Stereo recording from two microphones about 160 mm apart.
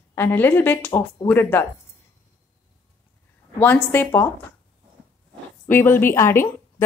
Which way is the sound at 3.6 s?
10° left (ahead or behind).